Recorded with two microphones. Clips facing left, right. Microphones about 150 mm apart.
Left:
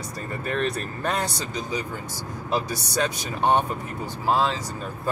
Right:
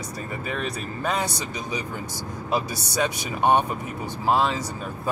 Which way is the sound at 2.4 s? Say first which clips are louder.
Even; 10° right (ahead or behind).